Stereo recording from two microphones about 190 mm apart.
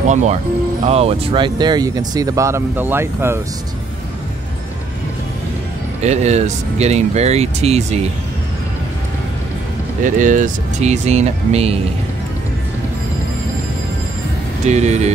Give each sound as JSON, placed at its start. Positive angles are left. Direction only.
{"t": 0.1, "sound": "speech", "side_deg": -40}
{"t": 5.9, "sound": "speech", "side_deg": -35}
{"t": 10.0, "sound": "speech", "side_deg": -40}
{"t": 14.7, "sound": "speech", "side_deg": -35}